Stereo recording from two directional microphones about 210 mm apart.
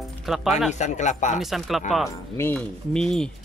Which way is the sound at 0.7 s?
35° left (ahead or behind).